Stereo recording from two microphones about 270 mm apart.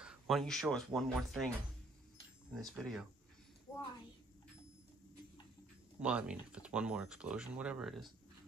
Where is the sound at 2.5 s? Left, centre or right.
Centre.